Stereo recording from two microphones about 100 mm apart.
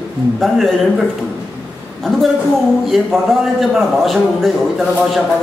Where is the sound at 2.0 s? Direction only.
5° left (ahead or behind).